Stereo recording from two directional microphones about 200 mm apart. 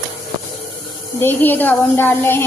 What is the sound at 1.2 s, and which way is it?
Speech, 10° left (ahead or behind).